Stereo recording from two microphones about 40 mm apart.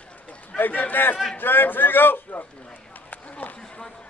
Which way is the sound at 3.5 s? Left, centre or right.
Centre.